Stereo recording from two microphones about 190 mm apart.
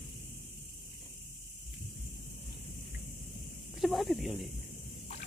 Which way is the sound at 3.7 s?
Centre (ahead or behind).